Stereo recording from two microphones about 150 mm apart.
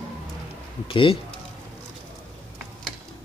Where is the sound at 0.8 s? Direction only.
35° left (ahead or behind).